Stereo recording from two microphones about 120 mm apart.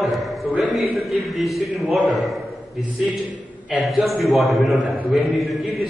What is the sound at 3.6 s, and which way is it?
A man's voice, centre (ahead or behind).